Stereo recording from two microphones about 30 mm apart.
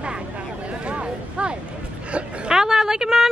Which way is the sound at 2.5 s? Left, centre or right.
Centre.